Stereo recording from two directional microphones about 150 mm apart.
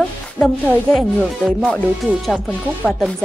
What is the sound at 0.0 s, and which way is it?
Music, 10° left (ahead or behind).